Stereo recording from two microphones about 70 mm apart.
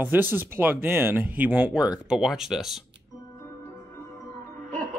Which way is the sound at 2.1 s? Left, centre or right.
Centre.